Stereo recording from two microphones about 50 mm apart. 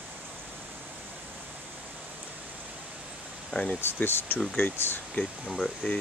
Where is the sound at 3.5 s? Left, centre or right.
Left.